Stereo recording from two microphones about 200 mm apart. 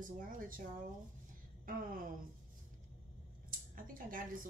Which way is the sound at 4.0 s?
45° right (ahead or behind).